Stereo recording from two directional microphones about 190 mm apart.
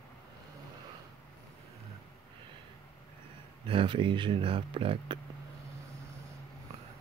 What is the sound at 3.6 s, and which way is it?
Speech, 30° right (ahead or behind).